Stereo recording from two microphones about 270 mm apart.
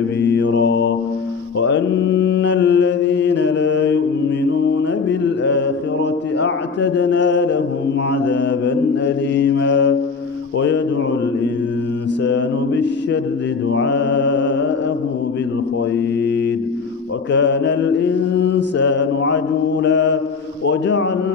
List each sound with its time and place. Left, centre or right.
0.2 s mantra: left
5.2 s mantra: left
6.4 s a sound: left
8.3 s mantra: left
12.3 s mantra: left
17.3 s mantra: left